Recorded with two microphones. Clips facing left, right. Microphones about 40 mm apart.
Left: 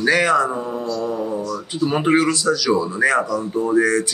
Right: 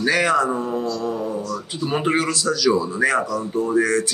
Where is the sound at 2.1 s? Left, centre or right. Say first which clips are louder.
Left 4 dB; centre.